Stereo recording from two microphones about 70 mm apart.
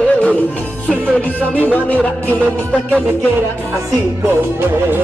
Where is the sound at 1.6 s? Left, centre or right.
Left.